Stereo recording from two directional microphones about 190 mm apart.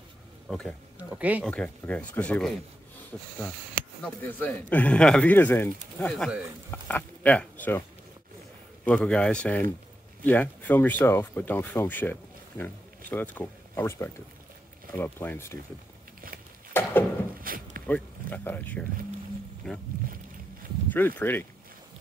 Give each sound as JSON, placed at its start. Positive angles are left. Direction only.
{"t": 0.5, "sound": "speech", "side_deg": 5}
{"t": 0.9, "sound": "speech", "side_deg": -10}
{"t": 1.4, "sound": "speech", "side_deg": 5}
{"t": 8.8, "sound": "speech", "side_deg": 5}
{"t": 16.8, "sound": "a sound", "side_deg": 10}
{"t": 17.4, "sound": "a sound", "side_deg": -50}
{"t": 17.8, "sound": "speech", "side_deg": 10}
{"t": 20.9, "sound": "speech", "side_deg": 10}